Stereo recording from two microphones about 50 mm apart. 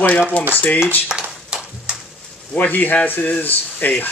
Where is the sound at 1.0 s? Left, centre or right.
Centre.